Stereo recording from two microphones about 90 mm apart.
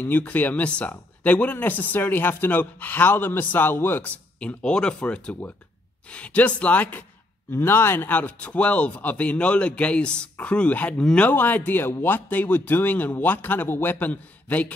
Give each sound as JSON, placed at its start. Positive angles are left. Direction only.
{"t": 0.0, "sound": "speech", "side_deg": 20}